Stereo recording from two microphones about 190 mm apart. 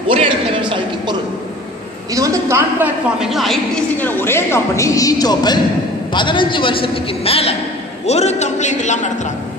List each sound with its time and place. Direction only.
0.1 s speech: 30° right (ahead or behind)
2.1 s a woman's voice: 15° right (ahead or behind)
3.2 s a woman's voice: centre (ahead or behind)
4.0 s a woman's voice: 10° left (ahead or behind); by 9.1 s 40° left (ahead or behind)